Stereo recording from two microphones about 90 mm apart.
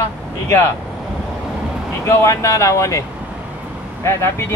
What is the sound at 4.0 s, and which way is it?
Speech, 30° left (ahead or behind).